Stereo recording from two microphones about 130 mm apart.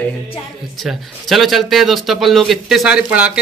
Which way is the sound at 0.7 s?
Centre (ahead or behind).